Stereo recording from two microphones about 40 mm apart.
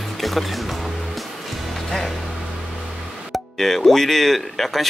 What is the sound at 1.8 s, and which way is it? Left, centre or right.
Speech, centre.